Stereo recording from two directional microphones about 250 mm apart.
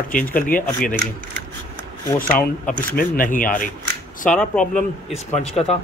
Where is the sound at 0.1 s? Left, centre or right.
Left.